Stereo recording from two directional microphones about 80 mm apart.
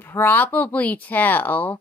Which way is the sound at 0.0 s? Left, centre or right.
Left.